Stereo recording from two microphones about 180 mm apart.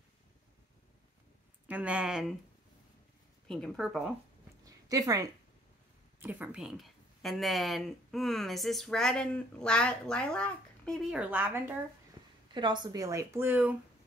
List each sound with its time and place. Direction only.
1.7 s speech: 5° right (ahead or behind)
3.4 s a woman's voice: 5° left (ahead or behind)
4.6 s a sound: 20° right (ahead or behind)
6.1 s a woman's voice: 10° right (ahead or behind)
12.5 s speech: 25° right (ahead or behind)